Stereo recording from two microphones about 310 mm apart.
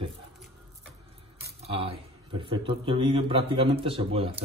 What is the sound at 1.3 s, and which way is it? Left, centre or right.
Speech, centre.